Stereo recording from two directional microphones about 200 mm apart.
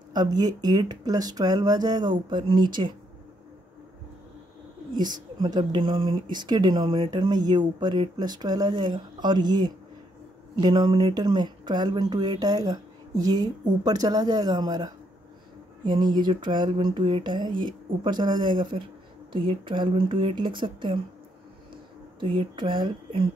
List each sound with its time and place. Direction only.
0.1 s speech: 20° right (ahead or behind)
4.9 s speech: 20° right (ahead or behind)
22.2 s speech: 25° right (ahead or behind)